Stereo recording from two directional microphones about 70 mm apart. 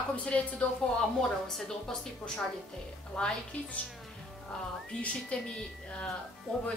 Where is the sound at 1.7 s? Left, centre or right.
Centre.